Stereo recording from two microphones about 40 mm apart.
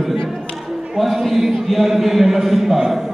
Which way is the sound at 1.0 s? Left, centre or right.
Centre.